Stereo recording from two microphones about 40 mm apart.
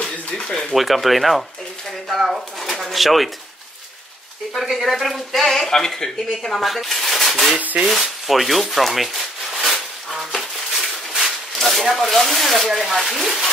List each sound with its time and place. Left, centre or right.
0.0 s a sound: centre
0.7 s speech: centre
4.6 s speech: centre
6.5 s speech: centre
7.8 s rub: centre
11.9 s speech: centre